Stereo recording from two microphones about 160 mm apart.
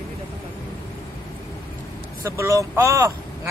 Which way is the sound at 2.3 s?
20° right (ahead or behind).